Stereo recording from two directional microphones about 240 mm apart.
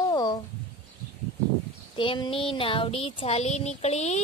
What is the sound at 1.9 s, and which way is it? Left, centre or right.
Child singing, left.